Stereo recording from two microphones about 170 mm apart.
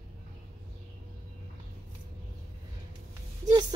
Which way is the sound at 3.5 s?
25° right (ahead or behind).